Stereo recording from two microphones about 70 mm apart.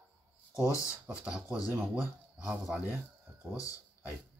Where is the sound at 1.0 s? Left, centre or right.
Centre.